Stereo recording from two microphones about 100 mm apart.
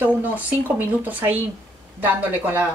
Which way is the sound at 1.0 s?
20° right (ahead or behind).